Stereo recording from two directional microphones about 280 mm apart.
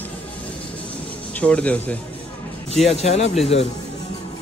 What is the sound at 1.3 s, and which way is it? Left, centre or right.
Speech, centre.